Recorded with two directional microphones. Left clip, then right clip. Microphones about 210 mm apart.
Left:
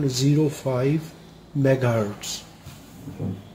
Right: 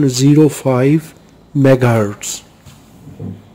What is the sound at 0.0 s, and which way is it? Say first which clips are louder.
A man's voice: right 12 dB; 50° right (ahead or behind).